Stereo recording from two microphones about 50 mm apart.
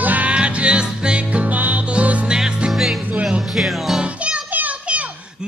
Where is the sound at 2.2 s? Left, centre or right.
Centre.